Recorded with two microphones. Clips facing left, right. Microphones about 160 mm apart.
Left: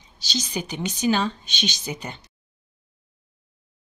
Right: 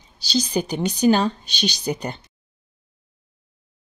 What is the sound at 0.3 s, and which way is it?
Speech, 35° right (ahead or behind).